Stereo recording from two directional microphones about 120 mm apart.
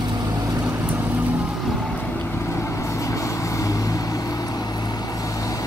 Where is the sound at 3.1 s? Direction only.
25° left (ahead or behind).